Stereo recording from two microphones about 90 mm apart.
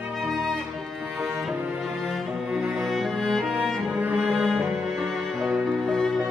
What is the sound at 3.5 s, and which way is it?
Music, 20° right (ahead or behind).